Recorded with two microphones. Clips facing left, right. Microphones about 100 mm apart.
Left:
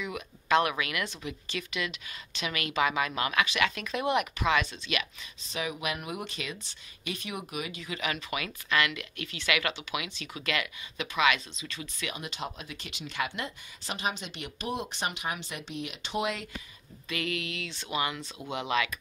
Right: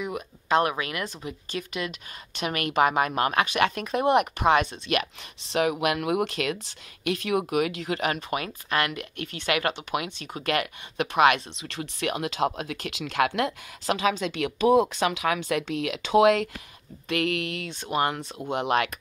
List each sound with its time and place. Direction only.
0.0 s speech: 40° right (ahead or behind)
5.4 s speech: 75° right (ahead or behind)
8.0 s speech: 45° right (ahead or behind); by 16.4 s 90° right
17.1 s speech: 60° right (ahead or behind)